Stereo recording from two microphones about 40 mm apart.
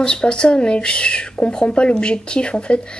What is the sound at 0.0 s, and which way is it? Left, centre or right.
Speech, left.